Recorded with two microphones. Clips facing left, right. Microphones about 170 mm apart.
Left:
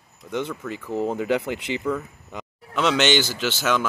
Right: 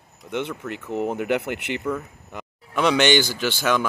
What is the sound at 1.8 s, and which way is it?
Speech, 5° right (ahead or behind).